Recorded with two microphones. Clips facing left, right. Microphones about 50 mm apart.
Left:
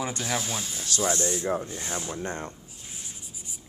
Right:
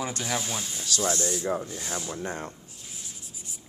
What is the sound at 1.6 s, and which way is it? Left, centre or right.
Speech, left.